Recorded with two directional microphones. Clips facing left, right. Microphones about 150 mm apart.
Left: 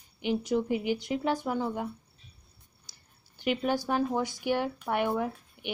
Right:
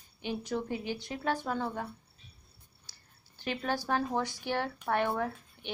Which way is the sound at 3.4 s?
15° left (ahead or behind).